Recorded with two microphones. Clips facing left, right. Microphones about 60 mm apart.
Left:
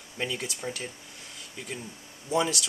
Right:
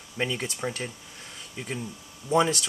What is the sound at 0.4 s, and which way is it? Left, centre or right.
Speech, right.